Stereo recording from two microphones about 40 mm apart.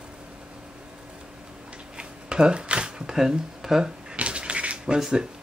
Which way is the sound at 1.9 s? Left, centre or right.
Right.